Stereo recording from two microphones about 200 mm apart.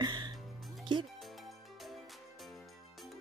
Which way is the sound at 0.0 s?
20° right (ahead or behind).